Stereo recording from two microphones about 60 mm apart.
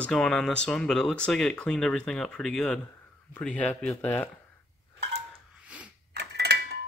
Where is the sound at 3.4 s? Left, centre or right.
Left.